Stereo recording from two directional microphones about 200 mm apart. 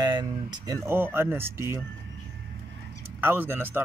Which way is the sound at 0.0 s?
20° right (ahead or behind).